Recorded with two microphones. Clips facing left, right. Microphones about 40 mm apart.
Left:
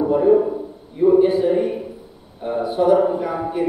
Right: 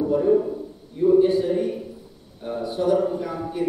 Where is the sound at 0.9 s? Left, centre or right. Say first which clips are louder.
Left 3 dB; left.